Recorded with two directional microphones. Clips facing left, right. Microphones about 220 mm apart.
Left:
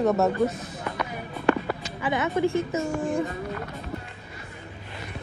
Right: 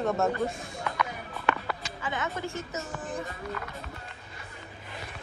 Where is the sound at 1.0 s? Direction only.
25° left (ahead or behind).